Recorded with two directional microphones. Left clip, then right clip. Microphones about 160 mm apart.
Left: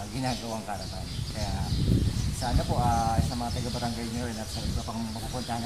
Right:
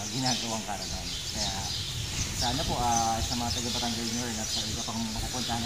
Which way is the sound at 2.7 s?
10° left (ahead or behind).